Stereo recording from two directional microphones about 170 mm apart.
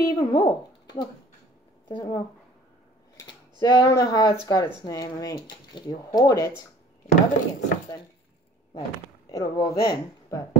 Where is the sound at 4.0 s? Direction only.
25° left (ahead or behind).